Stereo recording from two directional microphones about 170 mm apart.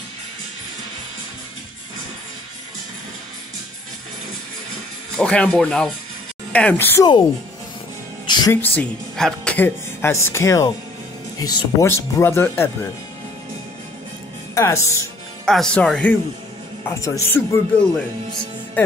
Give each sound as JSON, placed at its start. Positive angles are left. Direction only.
{"t": 5.1, "sound": "speech", "side_deg": 5}
{"t": 8.3, "sound": "music", "side_deg": 25}
{"t": 8.6, "sound": "speech", "side_deg": 5}
{"t": 14.5, "sound": "music", "side_deg": 15}
{"t": 15.4, "sound": "speech", "side_deg": 5}
{"t": 16.8, "sound": "speech", "side_deg": 20}
{"t": 17.3, "sound": "speech", "side_deg": 5}